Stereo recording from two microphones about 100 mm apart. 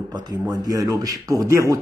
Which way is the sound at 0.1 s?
45° right (ahead or behind).